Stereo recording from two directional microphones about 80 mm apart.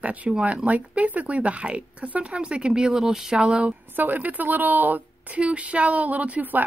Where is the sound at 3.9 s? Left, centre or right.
Right.